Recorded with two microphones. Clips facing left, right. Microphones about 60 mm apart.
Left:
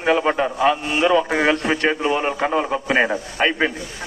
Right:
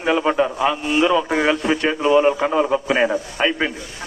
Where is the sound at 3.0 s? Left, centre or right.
Centre.